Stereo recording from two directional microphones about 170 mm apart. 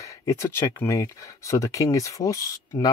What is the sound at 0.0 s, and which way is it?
Speech, 20° left (ahead or behind).